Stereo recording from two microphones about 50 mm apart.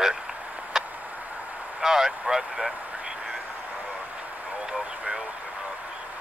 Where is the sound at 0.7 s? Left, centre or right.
Centre.